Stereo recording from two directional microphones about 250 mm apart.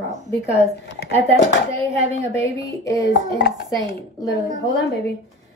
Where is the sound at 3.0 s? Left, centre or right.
Left.